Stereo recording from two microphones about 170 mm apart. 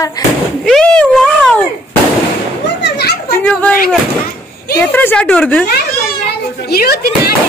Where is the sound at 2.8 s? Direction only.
70° left (ahead or behind).